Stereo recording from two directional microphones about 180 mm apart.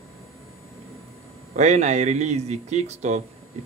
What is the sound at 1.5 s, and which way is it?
Speech, 40° right (ahead or behind).